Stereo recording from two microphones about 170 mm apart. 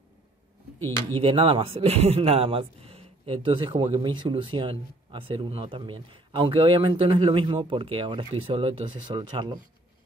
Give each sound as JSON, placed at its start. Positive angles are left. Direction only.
{"t": 0.7, "sound": "speech", "side_deg": 15}
{"t": 1.2, "sound": "speech", "side_deg": -30}